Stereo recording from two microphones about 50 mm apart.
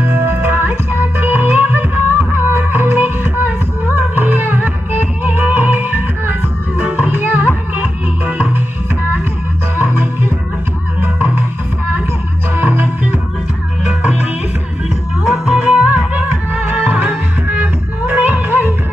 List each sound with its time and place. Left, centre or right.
0.0 s music: right
9.8 s music: right
12.5 s music: right
13.8 s music: right
15.2 s music: centre
15.7 s music: right